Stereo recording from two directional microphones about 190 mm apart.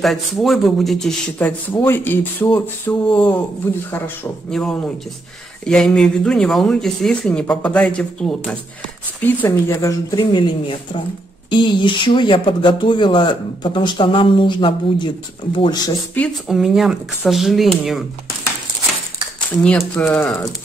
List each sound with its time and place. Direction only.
0.0 s speech: centre (ahead or behind); by 15.9 s 25° left (ahead or behind)
16.4 s speech: centre (ahead or behind)
19.6 s speech: 5° left (ahead or behind)